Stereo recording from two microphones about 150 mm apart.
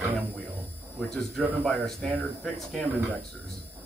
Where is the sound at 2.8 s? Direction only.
10° right (ahead or behind).